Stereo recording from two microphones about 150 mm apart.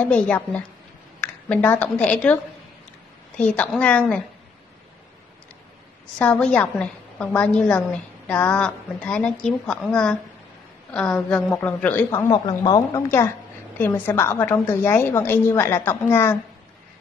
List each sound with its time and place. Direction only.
0.0 s a woman's voice: 10° left (ahead or behind)
6.1 s a woman's voice: 10° left (ahead or behind)